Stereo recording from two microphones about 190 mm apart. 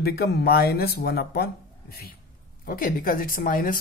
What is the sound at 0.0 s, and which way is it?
Speech, 55° left (ahead or behind).